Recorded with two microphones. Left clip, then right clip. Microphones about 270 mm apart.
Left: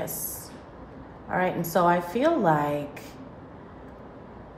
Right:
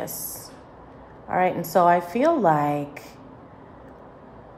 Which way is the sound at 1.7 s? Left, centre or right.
Right.